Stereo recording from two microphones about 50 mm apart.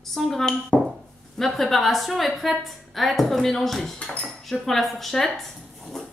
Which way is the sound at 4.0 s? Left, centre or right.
Left.